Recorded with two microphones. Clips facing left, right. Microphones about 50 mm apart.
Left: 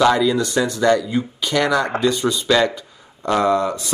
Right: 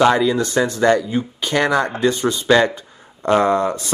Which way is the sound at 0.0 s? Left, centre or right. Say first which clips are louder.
Right 1 dB; right.